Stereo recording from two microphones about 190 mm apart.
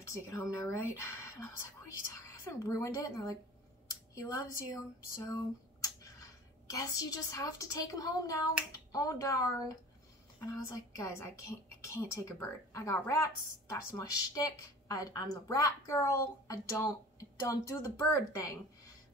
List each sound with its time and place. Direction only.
0.0 s a woman's voice: 15° left (ahead or behind)
5.2 s a sound: 15° left (ahead or behind)
6.7 s a woman's voice: 20° left (ahead or behind)